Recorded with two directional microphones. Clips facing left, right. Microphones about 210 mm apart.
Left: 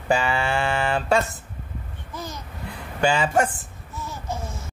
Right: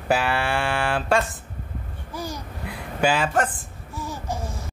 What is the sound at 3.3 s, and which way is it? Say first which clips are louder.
Speech: left 2 dB; 10° left (ahead or behind).